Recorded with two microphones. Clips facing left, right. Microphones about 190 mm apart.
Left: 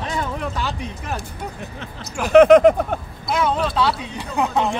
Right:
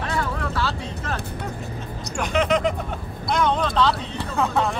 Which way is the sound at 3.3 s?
5° left (ahead or behind).